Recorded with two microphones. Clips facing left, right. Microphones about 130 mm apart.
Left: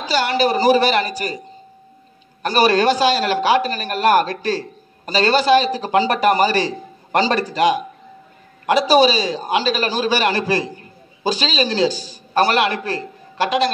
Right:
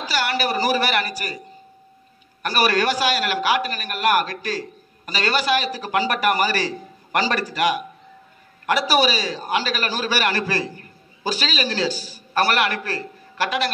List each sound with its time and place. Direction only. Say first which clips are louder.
0.0 s a man's voice: left 5 dB; 20° left (ahead or behind)
2.4 s a man's voice: left 5 dB; 25° left (ahead or behind)